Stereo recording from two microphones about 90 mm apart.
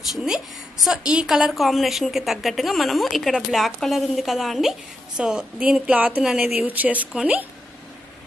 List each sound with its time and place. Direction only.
0.1 s a woman's voice: 5° right (ahead or behind)